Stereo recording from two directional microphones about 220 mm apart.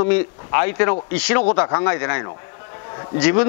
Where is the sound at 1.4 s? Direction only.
25° left (ahead or behind).